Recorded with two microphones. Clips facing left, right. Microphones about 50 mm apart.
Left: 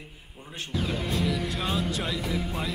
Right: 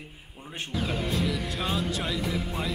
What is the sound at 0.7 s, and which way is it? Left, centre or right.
Music, centre.